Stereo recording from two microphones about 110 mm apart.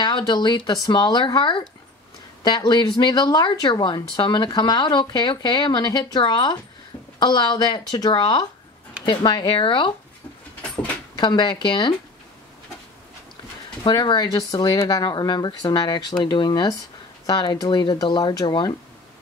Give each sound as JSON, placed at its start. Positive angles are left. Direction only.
{"t": 0.0, "sound": "speech", "side_deg": 40}
{"t": 11.1, "sound": "speech", "side_deg": 45}
{"t": 13.8, "sound": "speech", "side_deg": 40}